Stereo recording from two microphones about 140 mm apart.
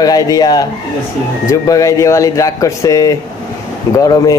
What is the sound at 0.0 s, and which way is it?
Speech, 25° left (ahead or behind).